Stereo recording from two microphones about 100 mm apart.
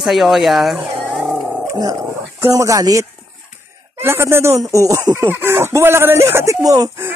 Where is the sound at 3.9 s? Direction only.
25° right (ahead or behind).